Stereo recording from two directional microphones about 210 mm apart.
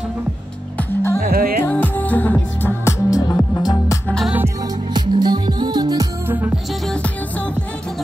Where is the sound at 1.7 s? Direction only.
10° left (ahead or behind).